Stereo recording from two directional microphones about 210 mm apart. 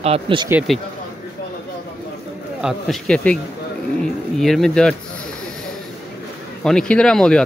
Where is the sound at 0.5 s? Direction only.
5° right (ahead or behind).